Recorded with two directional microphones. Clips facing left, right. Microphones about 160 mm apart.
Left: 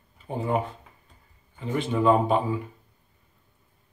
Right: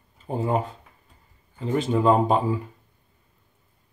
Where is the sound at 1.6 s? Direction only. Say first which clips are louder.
Right 3 dB; 40° right (ahead or behind).